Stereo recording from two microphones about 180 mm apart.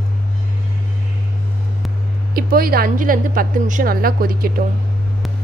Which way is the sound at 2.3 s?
55° right (ahead or behind).